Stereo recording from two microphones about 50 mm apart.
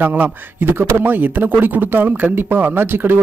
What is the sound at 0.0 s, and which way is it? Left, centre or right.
A man's voice, right.